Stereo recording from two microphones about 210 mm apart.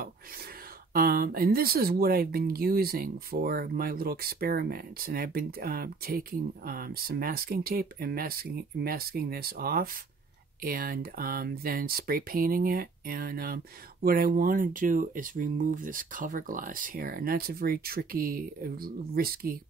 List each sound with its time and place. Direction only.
0.9 s speech: 45° right (ahead or behind)